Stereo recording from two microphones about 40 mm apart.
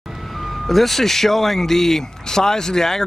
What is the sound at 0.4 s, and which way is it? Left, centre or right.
Speech, centre.